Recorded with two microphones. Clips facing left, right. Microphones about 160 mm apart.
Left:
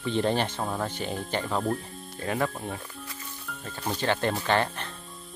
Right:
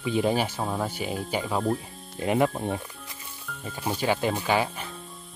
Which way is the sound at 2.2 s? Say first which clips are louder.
Right 5 dB; 20° right (ahead or behind).